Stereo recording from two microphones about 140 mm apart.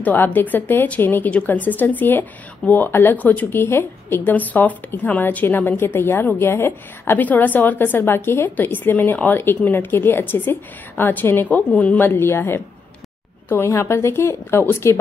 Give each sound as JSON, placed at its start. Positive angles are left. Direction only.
{"t": 0.0, "sound": "a woman's voice", "side_deg": 15}